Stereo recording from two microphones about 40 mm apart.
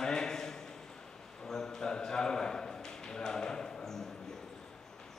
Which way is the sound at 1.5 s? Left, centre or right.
Centre.